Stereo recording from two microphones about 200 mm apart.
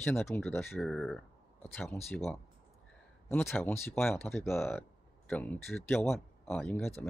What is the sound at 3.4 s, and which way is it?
Speech, 10° left (ahead or behind).